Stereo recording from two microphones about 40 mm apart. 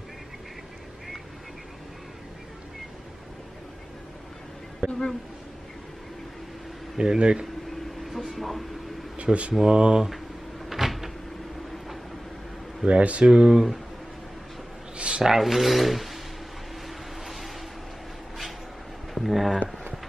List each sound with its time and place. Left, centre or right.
4.7 s a man's voice: centre
7.0 s speech: right
8.1 s speech: centre
9.1 s speech: right
9.5 s speech: centre
10.7 s cupboard open or close: centre
12.8 s speech: right
13.2 s speech: centre
15.0 s a sound: right
15.2 s speech: centre
19.1 s speech: centre